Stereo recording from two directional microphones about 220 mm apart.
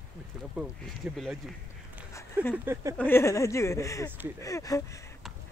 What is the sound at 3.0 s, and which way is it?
Speech, 10° left (ahead or behind).